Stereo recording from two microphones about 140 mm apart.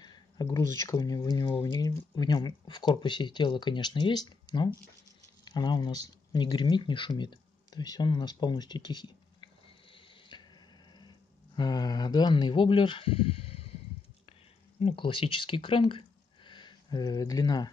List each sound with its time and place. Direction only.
0.0 s speech: 30° left (ahead or behind)
14.8 s speech: 40° left (ahead or behind)